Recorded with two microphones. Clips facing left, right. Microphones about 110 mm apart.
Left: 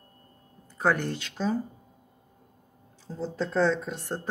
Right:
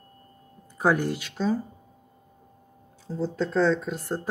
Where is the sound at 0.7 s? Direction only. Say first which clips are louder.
Right 3 dB; 10° right (ahead or behind).